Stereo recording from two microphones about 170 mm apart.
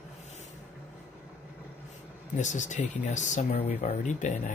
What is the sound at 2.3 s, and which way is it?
Speech, 45° left (ahead or behind).